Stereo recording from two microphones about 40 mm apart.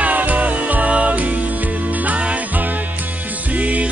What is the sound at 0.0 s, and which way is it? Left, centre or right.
Music, right.